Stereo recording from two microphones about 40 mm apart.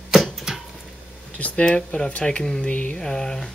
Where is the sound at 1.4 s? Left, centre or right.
Left.